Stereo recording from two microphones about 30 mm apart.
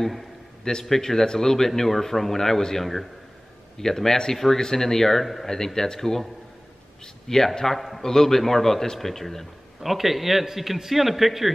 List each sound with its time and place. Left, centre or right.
0.8 s speech: centre
5.2 s a man's voice: centre
5.5 s speech: centre
7.2 s speech: centre
8.0 s speech: centre
9.8 s a man's voice: centre